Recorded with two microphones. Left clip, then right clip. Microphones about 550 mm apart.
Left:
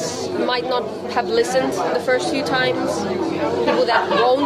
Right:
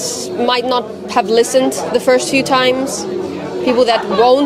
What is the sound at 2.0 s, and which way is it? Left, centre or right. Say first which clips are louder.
Speech: right 7 dB; right.